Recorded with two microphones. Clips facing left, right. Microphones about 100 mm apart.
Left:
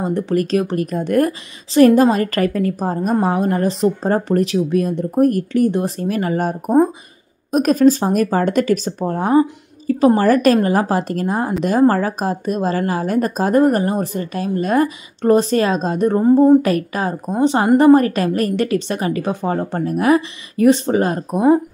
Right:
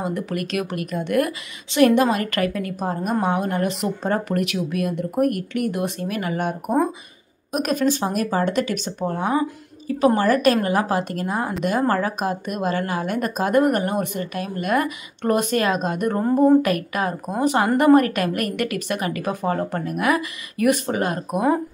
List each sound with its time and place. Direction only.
0.0 s a woman's voice: 30° left (ahead or behind)